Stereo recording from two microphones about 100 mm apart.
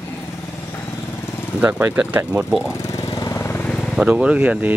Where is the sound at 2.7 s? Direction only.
30° left (ahead or behind).